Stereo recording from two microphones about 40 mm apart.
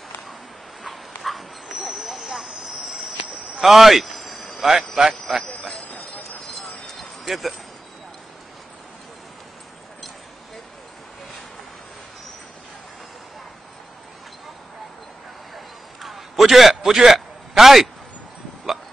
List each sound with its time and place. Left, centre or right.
0.8 s dog: centre
1.8 s a sound: centre
2.5 s cricket: centre
5.3 s jingle bell: centre
5.9 s train: left
7.2 s speech: centre
15.5 s a sound: centre